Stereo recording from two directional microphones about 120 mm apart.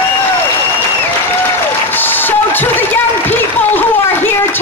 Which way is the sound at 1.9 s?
15° left (ahead or behind).